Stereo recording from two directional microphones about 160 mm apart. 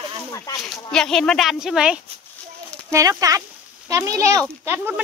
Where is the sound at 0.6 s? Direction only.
5° left (ahead or behind).